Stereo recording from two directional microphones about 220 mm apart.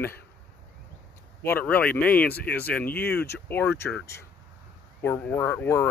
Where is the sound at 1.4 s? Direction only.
10° left (ahead or behind).